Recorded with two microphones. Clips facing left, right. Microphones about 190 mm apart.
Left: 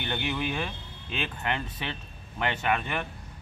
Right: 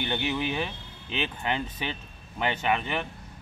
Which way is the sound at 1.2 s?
15° right (ahead or behind).